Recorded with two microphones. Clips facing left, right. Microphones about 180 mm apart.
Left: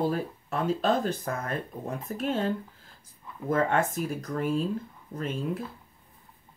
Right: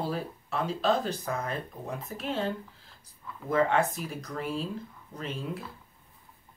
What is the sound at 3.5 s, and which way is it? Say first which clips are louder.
Speech: even; 50° left (ahead or behind).